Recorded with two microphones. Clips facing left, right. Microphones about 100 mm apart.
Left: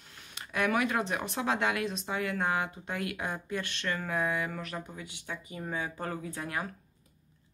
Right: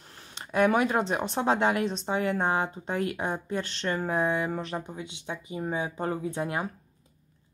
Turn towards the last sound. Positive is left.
turn(degrees=-25)  # may be behind; listen again after turning